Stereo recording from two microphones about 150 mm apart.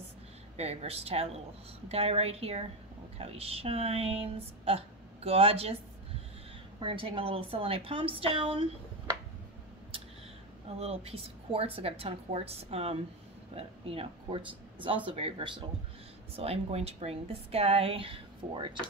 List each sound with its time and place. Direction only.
0.6 s speech: 45° right (ahead or behind)
6.8 s speech: 35° right (ahead or behind)
10.8 s speech: 45° right (ahead or behind)